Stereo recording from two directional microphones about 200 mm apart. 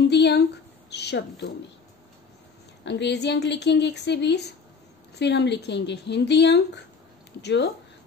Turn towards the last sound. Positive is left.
turn(degrees=60)  # may be behind; listen again after turning